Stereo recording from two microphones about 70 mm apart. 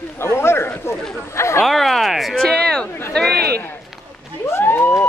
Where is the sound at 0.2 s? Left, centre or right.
Left.